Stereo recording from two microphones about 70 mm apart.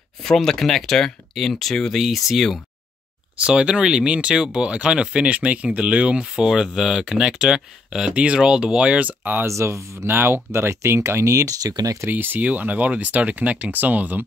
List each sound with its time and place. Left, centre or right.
0.2 s speech: centre
3.4 s speech: centre
9.5 s speech: right
12.1 s speech: right